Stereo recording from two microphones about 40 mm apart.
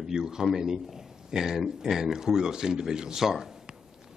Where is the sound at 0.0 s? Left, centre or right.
Centre.